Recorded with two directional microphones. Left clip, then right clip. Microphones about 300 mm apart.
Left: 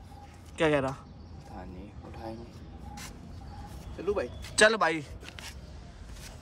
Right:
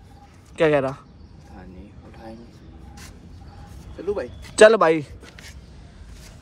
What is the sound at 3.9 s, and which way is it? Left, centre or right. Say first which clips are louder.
Speech: right 4 dB; centre.